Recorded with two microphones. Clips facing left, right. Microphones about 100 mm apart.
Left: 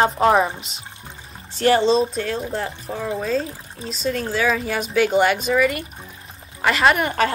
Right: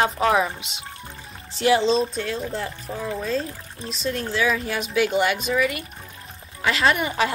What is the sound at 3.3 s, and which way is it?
Speech, centre (ahead or behind).